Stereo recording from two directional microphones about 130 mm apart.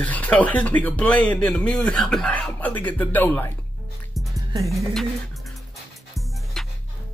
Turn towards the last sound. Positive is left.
turn(degrees=0)  # may be behind; listen again after turning